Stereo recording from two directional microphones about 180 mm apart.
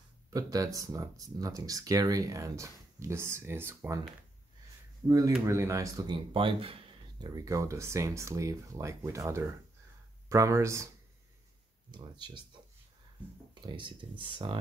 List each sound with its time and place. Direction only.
0.3 s speech: 20° right (ahead or behind)
5.0 s speech: 20° right (ahead or behind)
6.3 s speech: 30° right (ahead or behind)
11.9 s speech: 25° right (ahead or behind)
13.6 s speech: 25° right (ahead or behind)